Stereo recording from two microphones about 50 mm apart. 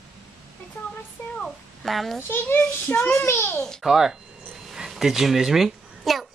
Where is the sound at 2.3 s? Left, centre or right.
Left.